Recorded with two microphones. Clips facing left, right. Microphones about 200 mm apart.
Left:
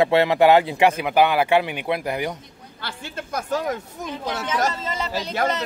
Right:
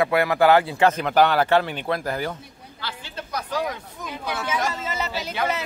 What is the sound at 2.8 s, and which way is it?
Speech, 50° left (ahead or behind).